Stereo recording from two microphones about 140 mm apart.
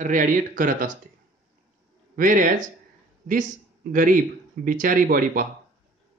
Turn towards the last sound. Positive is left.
turn(degrees=-90)